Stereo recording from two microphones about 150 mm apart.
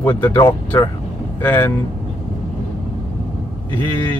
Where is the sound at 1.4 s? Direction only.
15° left (ahead or behind).